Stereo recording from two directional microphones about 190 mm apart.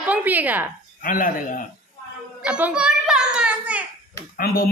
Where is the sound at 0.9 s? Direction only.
45° left (ahead or behind).